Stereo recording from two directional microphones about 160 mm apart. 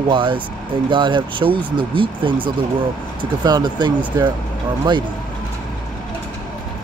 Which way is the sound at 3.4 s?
25° right (ahead or behind).